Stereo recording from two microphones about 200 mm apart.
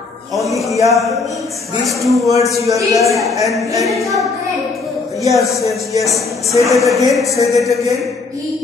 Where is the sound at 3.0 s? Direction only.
Centre (ahead or behind).